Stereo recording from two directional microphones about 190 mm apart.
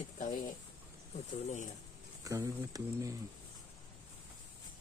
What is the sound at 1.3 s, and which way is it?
Speech, 40° left (ahead or behind).